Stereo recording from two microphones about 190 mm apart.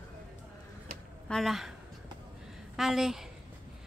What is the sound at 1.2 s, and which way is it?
Speech, centre (ahead or behind).